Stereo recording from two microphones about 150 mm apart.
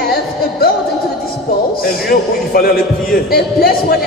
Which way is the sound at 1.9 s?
80° left.